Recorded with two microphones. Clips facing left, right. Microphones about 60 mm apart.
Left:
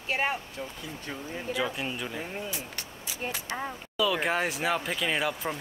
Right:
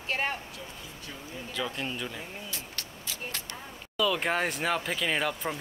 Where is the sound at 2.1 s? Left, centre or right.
Centre.